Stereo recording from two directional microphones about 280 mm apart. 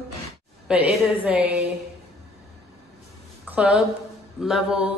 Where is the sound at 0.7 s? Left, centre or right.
Centre.